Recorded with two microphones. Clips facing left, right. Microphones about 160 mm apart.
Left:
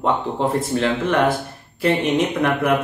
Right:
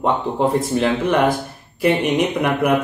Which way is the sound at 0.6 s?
15° right (ahead or behind).